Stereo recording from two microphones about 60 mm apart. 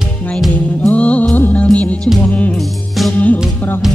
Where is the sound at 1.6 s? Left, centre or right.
Left.